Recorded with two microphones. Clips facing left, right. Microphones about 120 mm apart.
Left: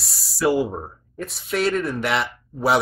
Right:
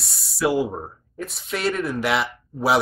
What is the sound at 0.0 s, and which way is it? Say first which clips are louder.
Speech: left 2 dB; centre (ahead or behind).